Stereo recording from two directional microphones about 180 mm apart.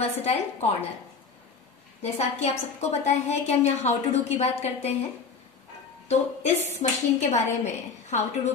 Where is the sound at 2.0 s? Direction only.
35° left (ahead or behind).